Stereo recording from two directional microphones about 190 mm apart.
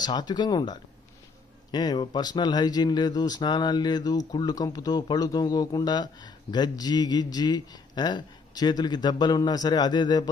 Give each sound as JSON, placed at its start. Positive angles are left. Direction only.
{"t": 0.0, "sound": "speech", "side_deg": 20}